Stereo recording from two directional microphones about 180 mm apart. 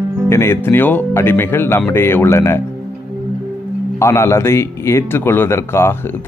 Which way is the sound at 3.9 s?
15° left (ahead or behind).